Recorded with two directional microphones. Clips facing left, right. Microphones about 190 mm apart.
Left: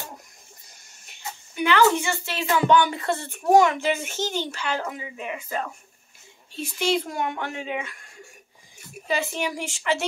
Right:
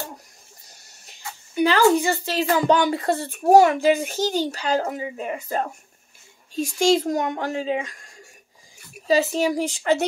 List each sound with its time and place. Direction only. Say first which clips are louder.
1.5 s speech: right 3 dB; 35° right (ahead or behind)